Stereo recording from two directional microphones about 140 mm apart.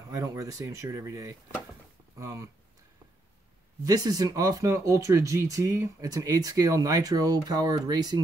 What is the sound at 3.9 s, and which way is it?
Speech, 25° right (ahead or behind).